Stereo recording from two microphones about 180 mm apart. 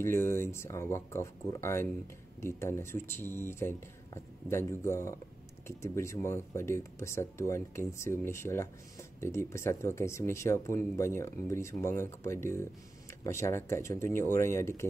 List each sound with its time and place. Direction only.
0.0 s speech: 15° left (ahead or behind)